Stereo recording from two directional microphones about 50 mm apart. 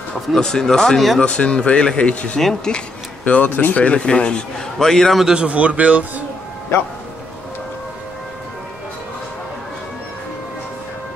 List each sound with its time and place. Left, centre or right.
0.3 s speech: centre
1.2 s a man's voice: left
2.4 s speech: centre
3.3 s a man's voice: left; by 5.1 s centre
5.3 s a man's voice: right
6.7 s a man's voice: left